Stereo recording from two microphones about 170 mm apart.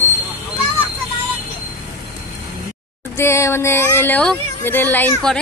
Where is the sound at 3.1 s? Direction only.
15° left (ahead or behind).